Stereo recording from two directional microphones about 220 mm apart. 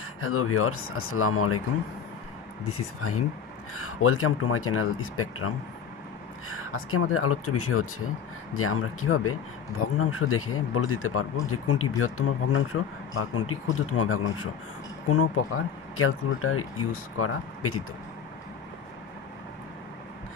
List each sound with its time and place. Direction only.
0.2 s speech: 75° left (ahead or behind)
2.7 s speech: 85° left
6.5 s speech: 75° left (ahead or behind)